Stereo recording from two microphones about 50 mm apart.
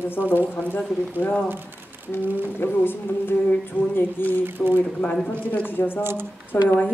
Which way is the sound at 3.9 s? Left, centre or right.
Left.